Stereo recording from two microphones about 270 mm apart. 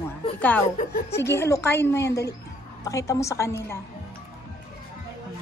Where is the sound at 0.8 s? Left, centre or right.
Left.